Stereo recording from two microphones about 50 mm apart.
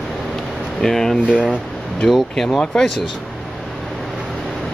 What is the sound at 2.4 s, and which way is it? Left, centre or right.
Speech, centre.